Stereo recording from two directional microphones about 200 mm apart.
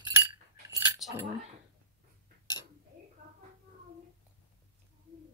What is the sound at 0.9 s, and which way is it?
Keys jangling, centre (ahead or behind).